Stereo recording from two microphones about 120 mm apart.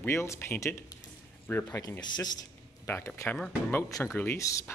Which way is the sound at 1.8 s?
35° left (ahead or behind).